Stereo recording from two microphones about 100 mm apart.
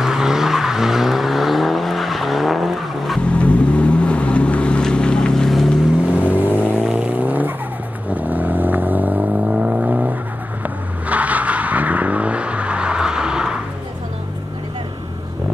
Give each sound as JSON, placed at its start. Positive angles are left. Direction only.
{"t": 0.0, "sound": "vehicle", "side_deg": -5}
{"t": 3.3, "sound": "vehicle", "side_deg": 10}
{"t": 6.1, "sound": "vehicle", "side_deg": -15}